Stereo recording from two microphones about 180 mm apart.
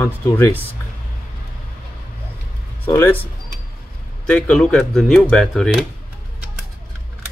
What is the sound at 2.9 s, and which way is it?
Speech, 10° left (ahead or behind).